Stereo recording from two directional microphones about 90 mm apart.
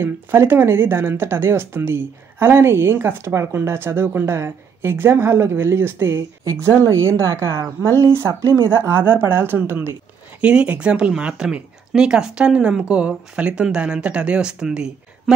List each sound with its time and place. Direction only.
0.0 s speech: 25° right (ahead or behind)
8.6 s speech: 25° right (ahead or behind); by 15.3 s 10° right (ahead or behind)